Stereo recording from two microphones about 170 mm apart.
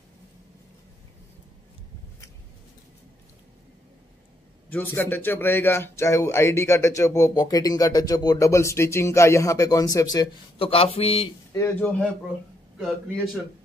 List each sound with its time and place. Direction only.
4.6 s a man's voice: 10° left (ahead or behind)
10.6 s speech: 35° left (ahead or behind)
11.5 s a man's voice: 15° left (ahead or behind)
12.7 s a man's voice: centre (ahead or behind)